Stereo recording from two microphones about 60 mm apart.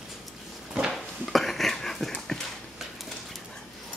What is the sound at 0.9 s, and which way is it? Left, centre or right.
Dog, centre.